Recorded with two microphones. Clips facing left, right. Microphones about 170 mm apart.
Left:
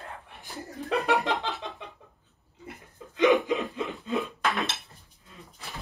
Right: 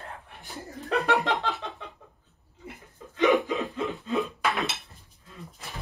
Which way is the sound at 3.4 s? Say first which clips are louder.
Left 1 dB; 15° left (ahead or behind).